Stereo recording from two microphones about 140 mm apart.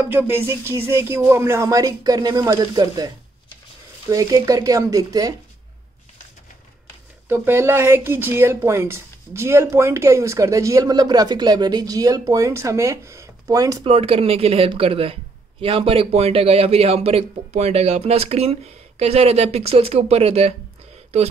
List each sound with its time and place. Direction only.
0.1 s speech: 15° right (ahead or behind)
4.1 s speech: 25° right (ahead or behind)
7.2 s speech: 15° right (ahead or behind)
13.8 s a man's voice: 45° right (ahead or behind)